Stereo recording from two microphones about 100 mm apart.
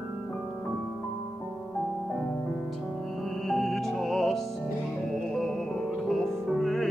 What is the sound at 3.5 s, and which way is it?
Music, centre (ahead or behind).